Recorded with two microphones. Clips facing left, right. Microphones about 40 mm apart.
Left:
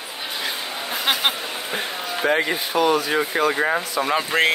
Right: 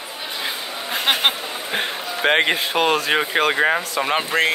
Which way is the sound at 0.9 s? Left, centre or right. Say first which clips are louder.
Right 3 dB; right.